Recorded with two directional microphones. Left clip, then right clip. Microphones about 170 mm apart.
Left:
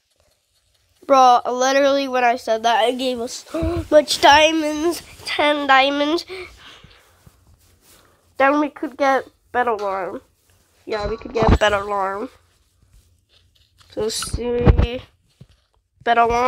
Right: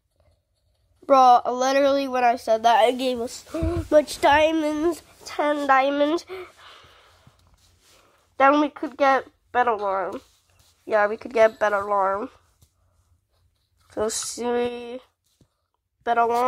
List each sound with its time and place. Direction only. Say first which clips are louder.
1.0 s speech: left 2 dB; 5° right (ahead or behind)
5.2 s speech: left 5 dB; centre (ahead or behind)
6.7 s a sound: left 3 dB; centre (ahead or behind)
8.0 s speech: left 1 dB; 5° left (ahead or behind)
11.7 s speech: left 1 dB; 20° left (ahead or behind)
13.8 s speech: left 3 dB; 5° left (ahead or behind)